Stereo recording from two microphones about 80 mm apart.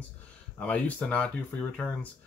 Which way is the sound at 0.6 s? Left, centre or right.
Centre.